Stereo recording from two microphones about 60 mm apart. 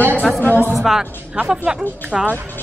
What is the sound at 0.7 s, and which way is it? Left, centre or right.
Speech, centre.